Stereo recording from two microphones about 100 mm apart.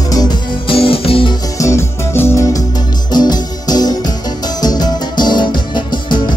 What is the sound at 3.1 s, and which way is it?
Music, 45° left (ahead or behind).